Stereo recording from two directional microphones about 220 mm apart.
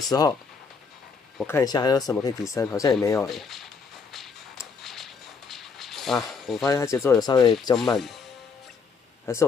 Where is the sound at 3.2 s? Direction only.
Centre (ahead or behind).